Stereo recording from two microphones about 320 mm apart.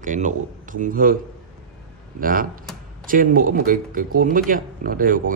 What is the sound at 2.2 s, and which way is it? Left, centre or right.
A man's voice, right.